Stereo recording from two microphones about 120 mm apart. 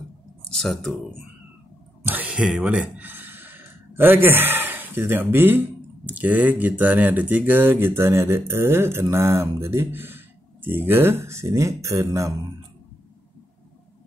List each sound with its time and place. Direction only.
0.5 s speech: 5° left (ahead or behind)
2.0 s speech: 10° right (ahead or behind)